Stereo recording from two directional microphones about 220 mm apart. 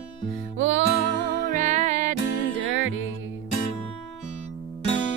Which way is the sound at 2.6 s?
60° right (ahead or behind).